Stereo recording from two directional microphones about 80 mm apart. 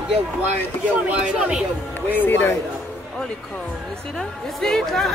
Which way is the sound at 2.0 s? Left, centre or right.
Left.